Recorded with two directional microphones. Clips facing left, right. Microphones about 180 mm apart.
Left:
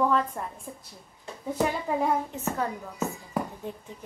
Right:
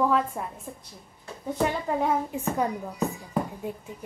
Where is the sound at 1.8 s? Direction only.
Centre (ahead or behind).